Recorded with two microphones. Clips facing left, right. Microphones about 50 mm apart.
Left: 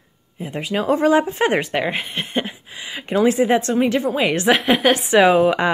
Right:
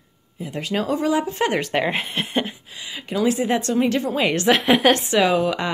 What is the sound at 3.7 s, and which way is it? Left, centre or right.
Speech, centre.